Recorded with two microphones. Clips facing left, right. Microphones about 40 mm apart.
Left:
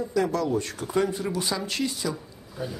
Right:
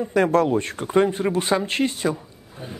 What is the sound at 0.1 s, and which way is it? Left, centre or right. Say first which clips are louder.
Speech: right 7 dB; right.